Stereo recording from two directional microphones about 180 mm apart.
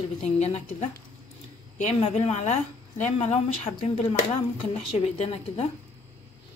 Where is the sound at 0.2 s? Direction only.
35° left (ahead or behind).